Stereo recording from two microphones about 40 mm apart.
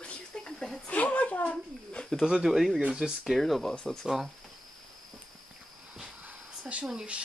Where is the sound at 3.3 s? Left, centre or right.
Centre.